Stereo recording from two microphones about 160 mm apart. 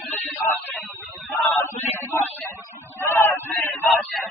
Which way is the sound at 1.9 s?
15° right (ahead or behind).